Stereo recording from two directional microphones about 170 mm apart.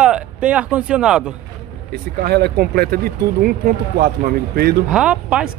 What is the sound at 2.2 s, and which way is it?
Speech, 70° right (ahead or behind).